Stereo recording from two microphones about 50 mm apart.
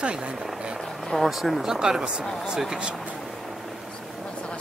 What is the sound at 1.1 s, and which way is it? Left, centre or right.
Speech, centre.